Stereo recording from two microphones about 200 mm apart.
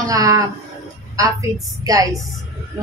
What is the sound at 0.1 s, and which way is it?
Speech, 15° right (ahead or behind).